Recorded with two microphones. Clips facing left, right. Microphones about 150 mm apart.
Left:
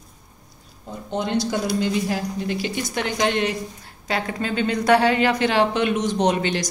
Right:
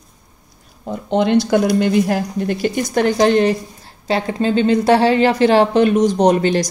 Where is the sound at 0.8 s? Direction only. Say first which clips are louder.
Right 9 dB; 75° right (ahead or behind).